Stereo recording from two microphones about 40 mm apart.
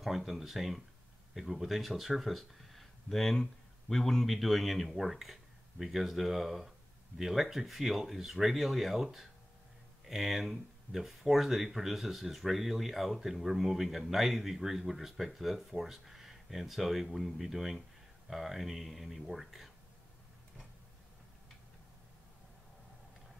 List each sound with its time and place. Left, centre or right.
0.0 s speech: centre